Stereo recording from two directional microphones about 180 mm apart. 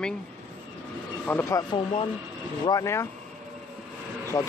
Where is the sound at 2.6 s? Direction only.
20° left (ahead or behind).